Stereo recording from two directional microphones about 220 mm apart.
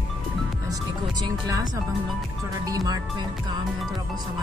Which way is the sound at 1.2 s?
15° right (ahead or behind).